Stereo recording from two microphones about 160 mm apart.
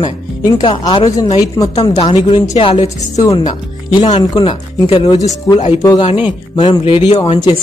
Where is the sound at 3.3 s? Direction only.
30° left (ahead or behind); by 5.8 s 45° left (ahead or behind).